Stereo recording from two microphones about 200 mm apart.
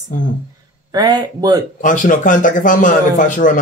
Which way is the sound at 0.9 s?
20° right (ahead or behind).